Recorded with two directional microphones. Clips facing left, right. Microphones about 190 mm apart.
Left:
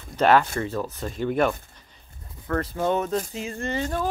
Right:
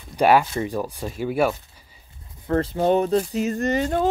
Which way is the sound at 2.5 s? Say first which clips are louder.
Right 5 dB; 25° right (ahead or behind).